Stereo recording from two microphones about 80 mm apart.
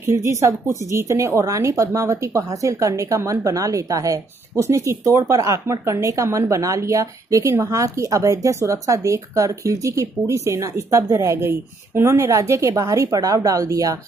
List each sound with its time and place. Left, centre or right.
0.0 s a woman's voice: right